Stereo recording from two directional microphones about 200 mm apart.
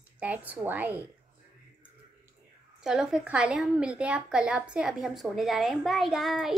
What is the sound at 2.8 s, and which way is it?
A woman's voice, 5° right (ahead or behind).